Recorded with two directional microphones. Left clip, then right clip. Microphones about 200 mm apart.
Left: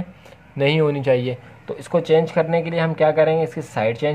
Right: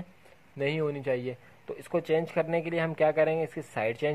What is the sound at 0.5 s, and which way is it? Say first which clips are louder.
Speech: left 11 dB; 20° right (ahead or behind).